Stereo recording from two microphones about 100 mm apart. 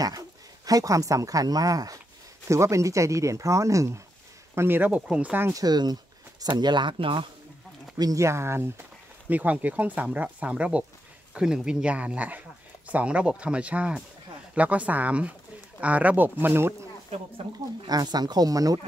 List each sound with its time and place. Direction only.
0.0 s speech: 40° right (ahead or behind); by 5.5 s 15° right (ahead or behind)
5.5 s speech: 40° right (ahead or behind); by 7.2 s 55° right (ahead or behind)
8.0 s speech: 35° right (ahead or behind)
17.8 s speech: 40° right (ahead or behind)